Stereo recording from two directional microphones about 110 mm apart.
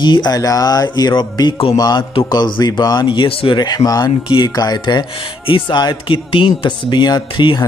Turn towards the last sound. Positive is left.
turn(degrees=45)  # may be behind; listen again after turning